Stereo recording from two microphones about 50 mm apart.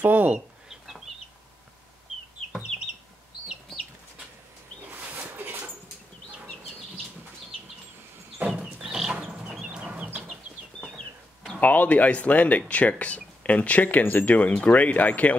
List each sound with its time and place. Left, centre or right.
0.0 s speech: right
0.7 s chicken: centre
2.7 s chicken: centre
5.3 s dog: right
8.8 s a sound: centre
9.1 s a sound: right
9.6 s chicken: centre
11.6 s speech: left